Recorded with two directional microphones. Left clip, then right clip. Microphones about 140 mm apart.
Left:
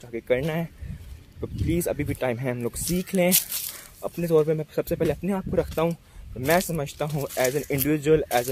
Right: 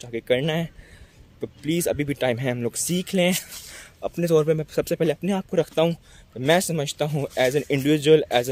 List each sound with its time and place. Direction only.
0.0 s speech: 40° right (ahead or behind)
4.0 s speech: 50° right (ahead or behind)